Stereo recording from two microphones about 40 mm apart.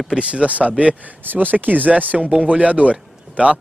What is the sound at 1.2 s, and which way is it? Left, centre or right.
Speech, right.